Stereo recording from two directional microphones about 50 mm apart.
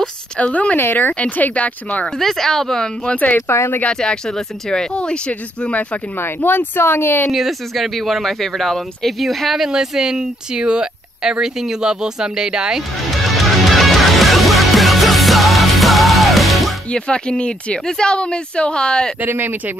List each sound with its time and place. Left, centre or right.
0.4 s speech: left
0.7 s speech: left
1.2 s speech: left
2.1 s speech: centre
3.2 s speech: left
3.4 s speech: left
3.9 s speech: centre
6.1 s speech: left
7.3 s speech: centre
9.7 s speech: centre
13.0 s music: centre
16.9 s speech: centre
19.2 s speech: right